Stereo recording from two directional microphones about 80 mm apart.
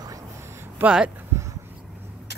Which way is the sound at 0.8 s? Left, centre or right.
Centre.